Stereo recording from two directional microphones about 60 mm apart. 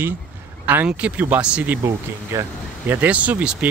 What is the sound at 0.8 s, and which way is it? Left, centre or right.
Speech, right.